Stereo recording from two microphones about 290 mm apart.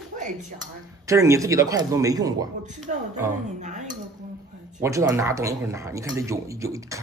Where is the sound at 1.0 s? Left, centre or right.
Centre.